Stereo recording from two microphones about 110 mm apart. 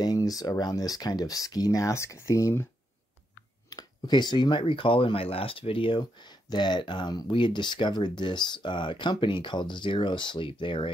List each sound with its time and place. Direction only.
0.0 s speech: 35° left (ahead or behind)
3.7 s speech: 40° left (ahead or behind)